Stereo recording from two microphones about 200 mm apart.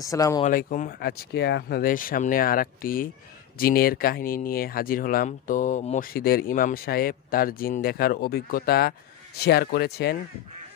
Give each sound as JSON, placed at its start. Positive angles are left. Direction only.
{"t": 0.0, "sound": "speech", "side_deg": 15}
{"t": 0.4, "sound": "speech", "side_deg": 40}